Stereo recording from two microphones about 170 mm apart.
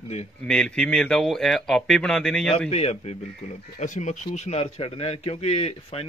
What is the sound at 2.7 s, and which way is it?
A man's voice, 40° left (ahead or behind).